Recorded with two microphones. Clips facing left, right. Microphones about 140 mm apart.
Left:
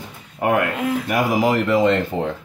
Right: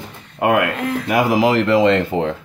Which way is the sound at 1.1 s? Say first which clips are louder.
Right 4 dB; 90° right.